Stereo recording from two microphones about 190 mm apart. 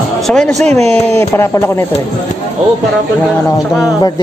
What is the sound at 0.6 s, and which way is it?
Speech, 35° right (ahead or behind).